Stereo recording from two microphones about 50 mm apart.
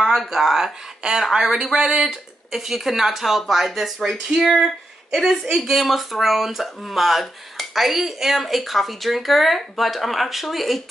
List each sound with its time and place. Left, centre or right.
0.0 s speech: centre